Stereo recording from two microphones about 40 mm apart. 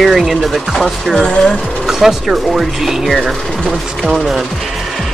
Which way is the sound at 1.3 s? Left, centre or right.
Left.